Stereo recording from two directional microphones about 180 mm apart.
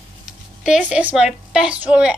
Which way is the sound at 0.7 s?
5° right (ahead or behind).